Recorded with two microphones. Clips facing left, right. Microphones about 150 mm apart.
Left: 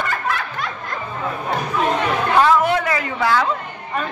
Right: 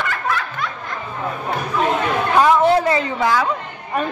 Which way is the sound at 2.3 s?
15° right (ahead or behind).